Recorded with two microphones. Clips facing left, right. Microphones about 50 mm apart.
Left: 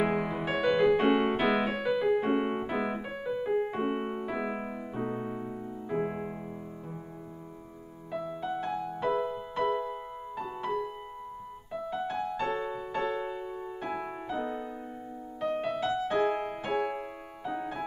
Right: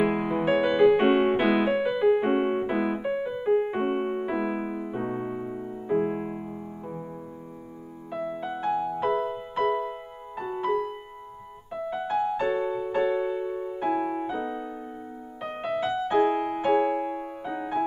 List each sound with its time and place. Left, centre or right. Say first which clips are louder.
0.0 s music: right 5 dB; centre
1.8 s piano: right 5 dB; centre
3.5 s piano: right 6 dB; right
8.1 s music: right 2 dB; right
9.8 s music: right 1 dB; centre
11.7 s music: right 5 dB; centre